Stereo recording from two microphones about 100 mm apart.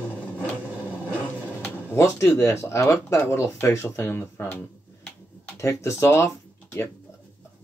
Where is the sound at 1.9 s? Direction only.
30° left (ahead or behind).